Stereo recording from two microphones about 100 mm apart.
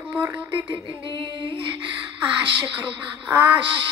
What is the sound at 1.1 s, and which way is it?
Music, 50° right (ahead or behind).